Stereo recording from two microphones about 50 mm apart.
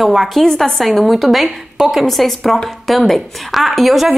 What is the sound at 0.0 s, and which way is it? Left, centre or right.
A woman's voice, centre.